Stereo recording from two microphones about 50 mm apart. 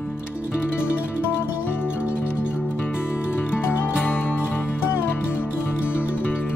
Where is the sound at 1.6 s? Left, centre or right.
Left.